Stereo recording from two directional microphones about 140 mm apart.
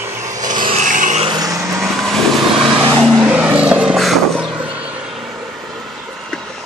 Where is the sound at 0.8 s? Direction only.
65° right (ahead or behind).